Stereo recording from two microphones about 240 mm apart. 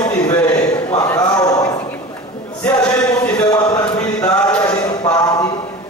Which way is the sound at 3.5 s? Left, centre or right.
Centre.